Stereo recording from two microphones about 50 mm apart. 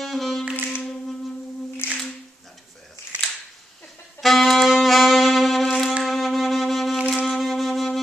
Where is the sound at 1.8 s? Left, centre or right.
Left.